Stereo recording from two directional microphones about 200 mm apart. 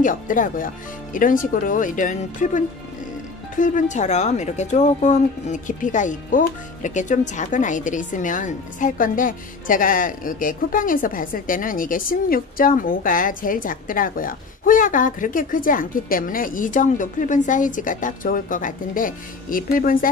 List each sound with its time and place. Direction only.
0.0 s speech: 40° left (ahead or behind)